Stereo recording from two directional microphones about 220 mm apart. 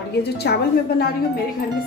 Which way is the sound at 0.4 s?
45° left (ahead or behind).